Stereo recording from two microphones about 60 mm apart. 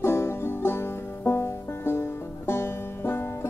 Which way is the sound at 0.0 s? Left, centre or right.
Left.